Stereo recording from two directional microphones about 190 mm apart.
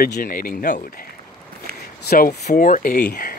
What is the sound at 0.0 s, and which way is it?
Speech, 50° left (ahead or behind).